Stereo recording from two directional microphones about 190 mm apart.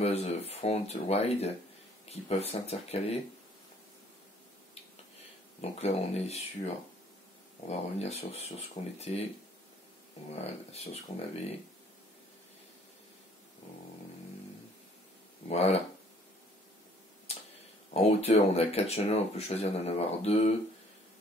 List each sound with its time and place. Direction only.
0.0 s speech: 35° left (ahead or behind)
5.6 s speech: 35° left (ahead or behind)
10.3 s speech: 35° left (ahead or behind)
15.4 s speech: 30° left (ahead or behind)
17.9 s speech: 35° left (ahead or behind)